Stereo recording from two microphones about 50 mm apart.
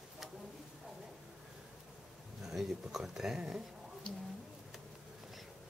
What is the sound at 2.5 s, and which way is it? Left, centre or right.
Speech, centre.